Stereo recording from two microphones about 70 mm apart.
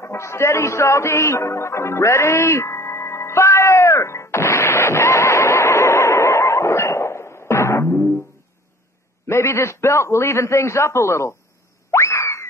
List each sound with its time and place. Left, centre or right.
0.0 s music: left
9.3 s a man's voice: left
11.9 s boing: left